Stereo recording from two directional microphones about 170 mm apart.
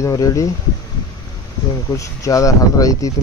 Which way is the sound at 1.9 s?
20° left (ahead or behind).